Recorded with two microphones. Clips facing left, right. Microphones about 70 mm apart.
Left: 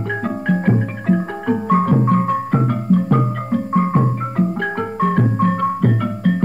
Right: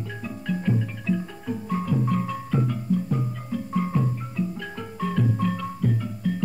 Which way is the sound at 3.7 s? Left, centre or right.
Left.